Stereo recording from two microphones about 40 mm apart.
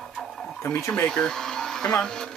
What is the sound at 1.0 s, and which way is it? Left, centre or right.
Speech, centre.